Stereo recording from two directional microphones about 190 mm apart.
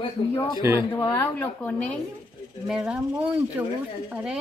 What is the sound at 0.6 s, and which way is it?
Speech, 15° right (ahead or behind).